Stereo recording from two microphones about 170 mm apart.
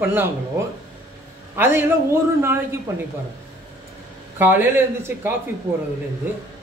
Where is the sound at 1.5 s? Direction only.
15° right (ahead or behind).